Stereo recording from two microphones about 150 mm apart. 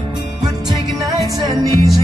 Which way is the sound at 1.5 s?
Centre (ahead or behind).